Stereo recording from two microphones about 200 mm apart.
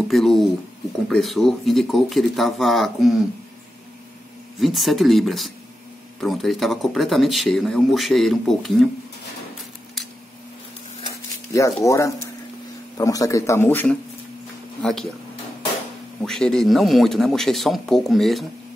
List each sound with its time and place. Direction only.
0.1 s speech: centre (ahead or behind)
4.6 s speech: centre (ahead or behind)
11.5 s speech: 15° left (ahead or behind)
16.2 s speech: 5° left (ahead or behind)